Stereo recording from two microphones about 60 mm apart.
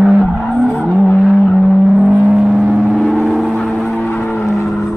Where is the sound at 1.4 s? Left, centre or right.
Left.